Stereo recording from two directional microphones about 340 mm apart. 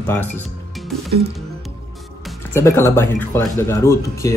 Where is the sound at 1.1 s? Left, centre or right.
Right.